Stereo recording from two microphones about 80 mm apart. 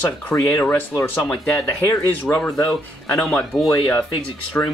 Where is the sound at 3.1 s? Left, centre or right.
Left.